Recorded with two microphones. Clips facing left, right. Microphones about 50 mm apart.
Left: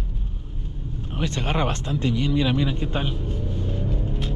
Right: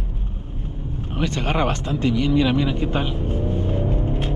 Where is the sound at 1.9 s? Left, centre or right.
Right.